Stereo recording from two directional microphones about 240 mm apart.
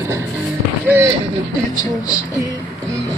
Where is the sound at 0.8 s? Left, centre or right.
Centre.